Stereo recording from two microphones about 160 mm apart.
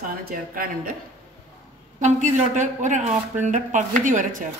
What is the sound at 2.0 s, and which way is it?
A man's voice, 50° right (ahead or behind).